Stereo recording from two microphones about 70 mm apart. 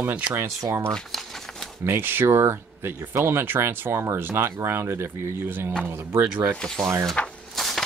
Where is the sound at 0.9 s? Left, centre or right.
Centre.